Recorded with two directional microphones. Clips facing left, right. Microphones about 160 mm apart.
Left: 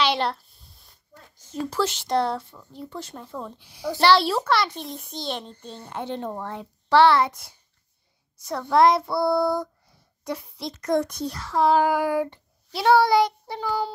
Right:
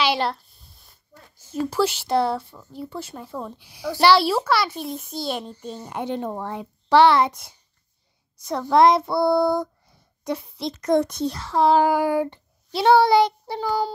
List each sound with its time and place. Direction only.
0.0 s a child's voice: 5° right (ahead or behind); by 13.9 s 35° right (ahead or behind)